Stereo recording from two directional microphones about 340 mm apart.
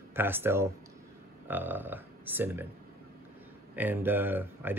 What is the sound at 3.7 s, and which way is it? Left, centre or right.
Speech, centre.